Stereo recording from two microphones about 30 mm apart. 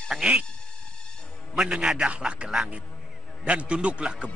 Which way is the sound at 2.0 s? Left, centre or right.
Right.